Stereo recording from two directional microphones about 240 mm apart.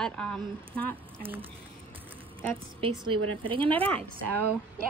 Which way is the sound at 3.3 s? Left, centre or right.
Right.